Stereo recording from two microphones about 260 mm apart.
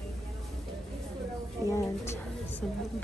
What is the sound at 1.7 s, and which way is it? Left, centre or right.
Speech, centre.